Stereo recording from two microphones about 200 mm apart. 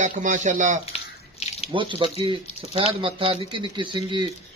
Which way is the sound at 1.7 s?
25° right (ahead or behind).